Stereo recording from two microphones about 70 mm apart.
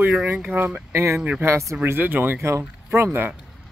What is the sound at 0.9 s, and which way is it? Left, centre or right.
Speech, right.